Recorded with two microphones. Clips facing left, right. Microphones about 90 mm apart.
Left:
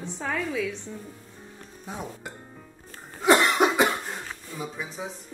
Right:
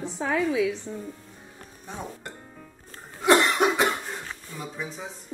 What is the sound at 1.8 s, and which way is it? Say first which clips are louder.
Speech: left 1 dB; 5° left (ahead or behind).